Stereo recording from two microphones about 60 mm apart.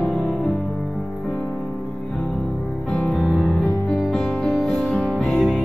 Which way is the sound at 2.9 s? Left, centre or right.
Centre.